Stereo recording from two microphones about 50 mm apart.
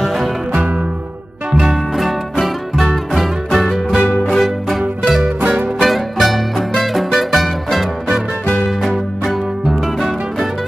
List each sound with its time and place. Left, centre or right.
0.0 s music: centre
1.5 s music: centre
2.4 s music: centre
5.2 s music: centre
5.8 s music: centre
8.8 s music: centre